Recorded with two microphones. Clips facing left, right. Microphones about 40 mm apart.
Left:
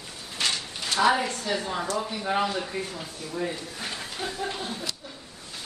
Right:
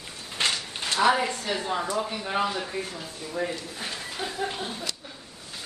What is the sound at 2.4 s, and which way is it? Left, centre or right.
Speech, centre.